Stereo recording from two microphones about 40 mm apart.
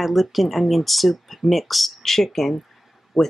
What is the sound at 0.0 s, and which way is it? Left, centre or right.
Speech, centre.